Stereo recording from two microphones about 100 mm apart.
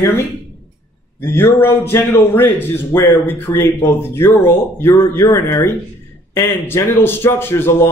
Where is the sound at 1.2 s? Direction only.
25° left (ahead or behind).